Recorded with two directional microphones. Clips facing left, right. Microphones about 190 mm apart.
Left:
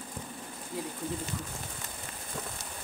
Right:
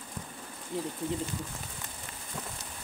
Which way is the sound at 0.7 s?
25° right (ahead or behind).